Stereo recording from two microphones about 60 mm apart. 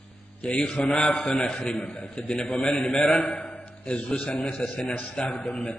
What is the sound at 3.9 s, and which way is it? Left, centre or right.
Speech, centre.